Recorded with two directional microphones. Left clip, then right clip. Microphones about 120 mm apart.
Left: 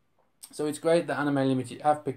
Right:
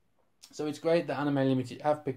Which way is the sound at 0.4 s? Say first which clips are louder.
Left 4 dB; 15° left (ahead or behind).